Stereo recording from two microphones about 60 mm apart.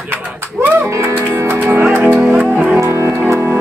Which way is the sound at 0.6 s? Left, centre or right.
Right.